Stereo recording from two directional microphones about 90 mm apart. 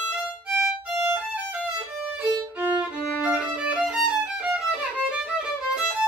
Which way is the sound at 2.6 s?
15° right (ahead or behind).